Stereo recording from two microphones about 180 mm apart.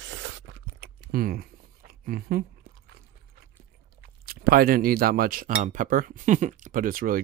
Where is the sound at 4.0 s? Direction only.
60° right (ahead or behind).